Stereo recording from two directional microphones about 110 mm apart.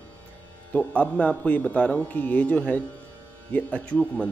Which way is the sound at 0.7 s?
15° left (ahead or behind).